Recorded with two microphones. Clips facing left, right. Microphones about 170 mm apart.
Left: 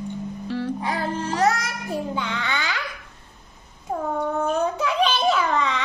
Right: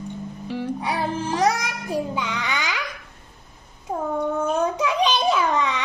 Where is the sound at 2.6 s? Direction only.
90° right.